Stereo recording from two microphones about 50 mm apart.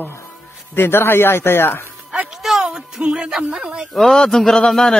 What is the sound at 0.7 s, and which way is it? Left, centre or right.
Speech, left.